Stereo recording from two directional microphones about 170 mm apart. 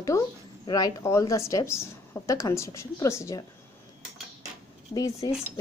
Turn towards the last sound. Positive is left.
turn(degrees=20)  # may be behind; listen again after turning